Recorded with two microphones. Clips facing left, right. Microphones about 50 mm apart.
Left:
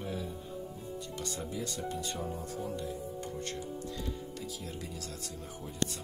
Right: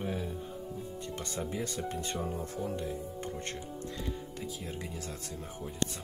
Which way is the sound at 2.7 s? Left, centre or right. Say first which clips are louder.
Right 1 dB; right.